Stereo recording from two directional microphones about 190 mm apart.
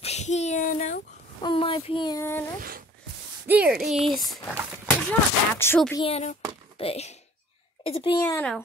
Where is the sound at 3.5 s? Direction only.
5° right (ahead or behind).